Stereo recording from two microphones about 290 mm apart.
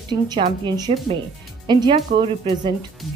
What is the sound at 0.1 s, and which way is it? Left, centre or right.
Speech, centre.